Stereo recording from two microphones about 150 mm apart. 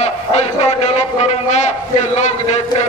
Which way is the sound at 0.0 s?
45° left (ahead or behind).